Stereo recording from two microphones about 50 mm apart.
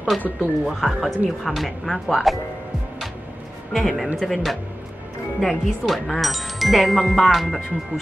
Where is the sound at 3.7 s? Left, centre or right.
Centre.